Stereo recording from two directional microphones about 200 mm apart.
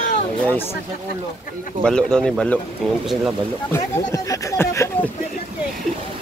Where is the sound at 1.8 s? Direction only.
5° left (ahead or behind).